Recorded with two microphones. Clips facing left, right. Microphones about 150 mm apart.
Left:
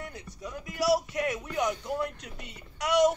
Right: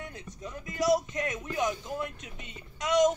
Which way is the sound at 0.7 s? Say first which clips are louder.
Even; 20° right (ahead or behind).